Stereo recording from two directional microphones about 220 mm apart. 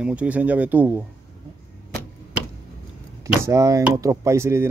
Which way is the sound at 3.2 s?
15° right (ahead or behind).